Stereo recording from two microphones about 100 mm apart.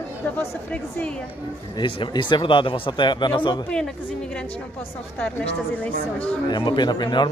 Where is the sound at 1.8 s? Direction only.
55° left (ahead or behind).